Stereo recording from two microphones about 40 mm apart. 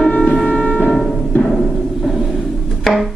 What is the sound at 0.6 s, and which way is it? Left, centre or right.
Music, left.